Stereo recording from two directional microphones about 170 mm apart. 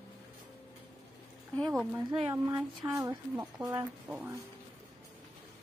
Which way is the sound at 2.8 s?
20° right (ahead or behind).